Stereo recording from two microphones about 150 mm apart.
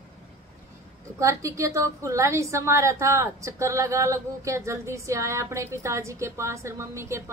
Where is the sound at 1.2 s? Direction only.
20° right (ahead or behind).